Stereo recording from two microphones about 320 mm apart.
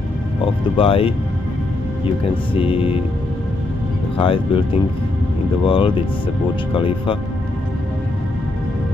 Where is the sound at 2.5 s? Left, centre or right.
Centre.